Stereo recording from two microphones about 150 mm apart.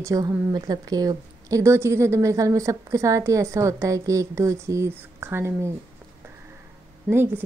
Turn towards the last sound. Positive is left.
turn(degrees=-15)  # may be behind; listen again after turning